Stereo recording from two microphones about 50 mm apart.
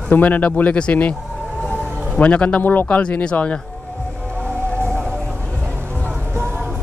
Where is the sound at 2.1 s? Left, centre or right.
Left.